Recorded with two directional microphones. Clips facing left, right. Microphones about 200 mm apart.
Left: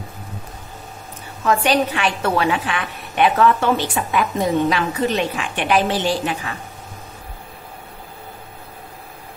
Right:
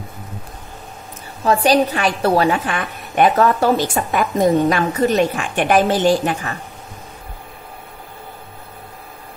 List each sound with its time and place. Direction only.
1.4 s a woman's voice: 35° right (ahead or behind)